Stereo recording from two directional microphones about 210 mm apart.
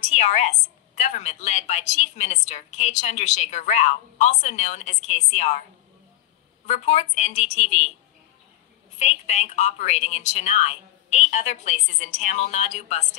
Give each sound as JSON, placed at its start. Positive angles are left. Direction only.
{"t": 0.0, "sound": "a woman's voice", "side_deg": 35}
{"t": 6.6, "sound": "a woman's voice", "side_deg": 30}
{"t": 8.9, "sound": "a woman's voice", "side_deg": 35}